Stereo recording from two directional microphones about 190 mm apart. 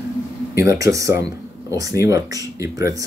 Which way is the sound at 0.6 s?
15° right (ahead or behind).